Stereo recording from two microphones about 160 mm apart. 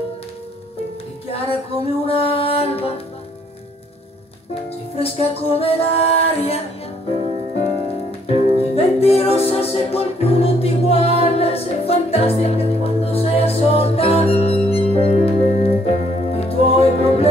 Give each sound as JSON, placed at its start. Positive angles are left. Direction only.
{"t": 1.3, "sound": "music", "side_deg": 40}
{"t": 4.6, "sound": "music", "side_deg": 40}
{"t": 8.3, "sound": "music", "side_deg": 40}